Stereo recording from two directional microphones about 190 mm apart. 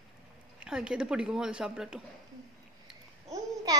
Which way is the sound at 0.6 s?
5° right (ahead or behind).